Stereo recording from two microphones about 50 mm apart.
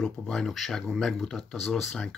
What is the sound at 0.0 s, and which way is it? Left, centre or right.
Speech, centre.